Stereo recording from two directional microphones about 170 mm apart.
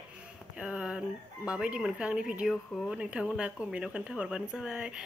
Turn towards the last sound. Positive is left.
turn(degrees=-5)  # may be behind; listen again after turning